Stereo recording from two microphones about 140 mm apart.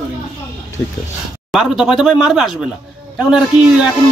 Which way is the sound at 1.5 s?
5° right (ahead or behind).